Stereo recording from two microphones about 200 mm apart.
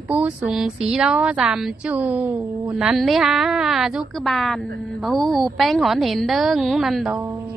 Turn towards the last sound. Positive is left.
turn(degrees=0)  # may be behind; listen again after turning